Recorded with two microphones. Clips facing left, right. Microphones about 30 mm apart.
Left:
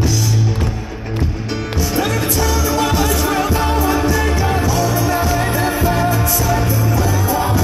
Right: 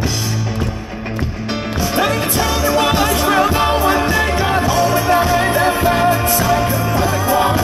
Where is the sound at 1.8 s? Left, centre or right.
Right.